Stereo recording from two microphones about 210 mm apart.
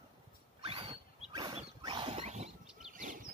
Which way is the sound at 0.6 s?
25° right (ahead or behind).